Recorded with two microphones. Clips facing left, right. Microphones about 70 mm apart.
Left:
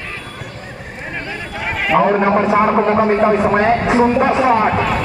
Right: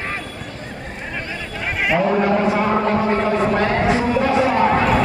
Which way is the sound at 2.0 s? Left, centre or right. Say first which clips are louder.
Left 5 dB; left.